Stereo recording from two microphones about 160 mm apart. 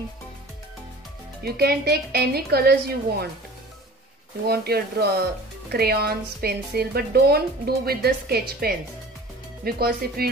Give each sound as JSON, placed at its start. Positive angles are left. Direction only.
{"t": 1.4, "sound": "a woman's voice", "side_deg": -80}
{"t": 4.5, "sound": "a woman's voice", "side_deg": -75}